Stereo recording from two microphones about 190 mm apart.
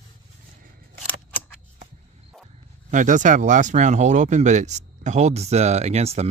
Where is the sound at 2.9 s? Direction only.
40° right (ahead or behind).